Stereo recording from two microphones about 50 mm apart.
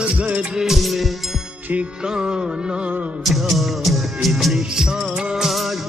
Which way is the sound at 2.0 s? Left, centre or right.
Centre.